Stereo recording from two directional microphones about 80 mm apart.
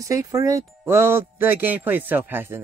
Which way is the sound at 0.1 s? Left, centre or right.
Right.